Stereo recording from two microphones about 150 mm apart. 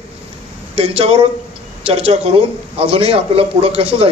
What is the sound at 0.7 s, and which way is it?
A man's voice, 40° right (ahead or behind).